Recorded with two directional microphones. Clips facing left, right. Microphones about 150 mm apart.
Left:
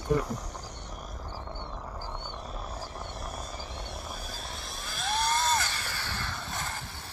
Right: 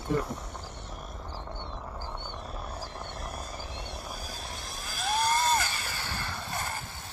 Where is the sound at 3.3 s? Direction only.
10° right (ahead or behind).